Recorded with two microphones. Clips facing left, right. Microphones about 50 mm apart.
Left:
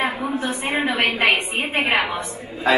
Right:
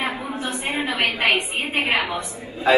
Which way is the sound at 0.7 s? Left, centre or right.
Left.